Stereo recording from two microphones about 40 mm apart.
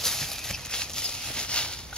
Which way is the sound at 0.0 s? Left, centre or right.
Centre.